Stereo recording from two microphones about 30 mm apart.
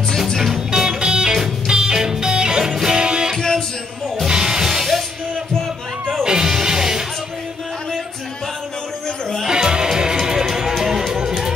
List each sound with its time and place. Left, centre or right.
0.8 s music: right
3.3 s music: centre
4.3 s music: right
6.2 s music: right
9.5 s music: right